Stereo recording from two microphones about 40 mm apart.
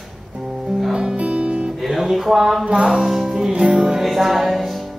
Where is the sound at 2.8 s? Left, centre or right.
Centre.